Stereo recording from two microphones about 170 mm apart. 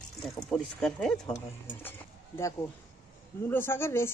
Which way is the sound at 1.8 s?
15° left (ahead or behind).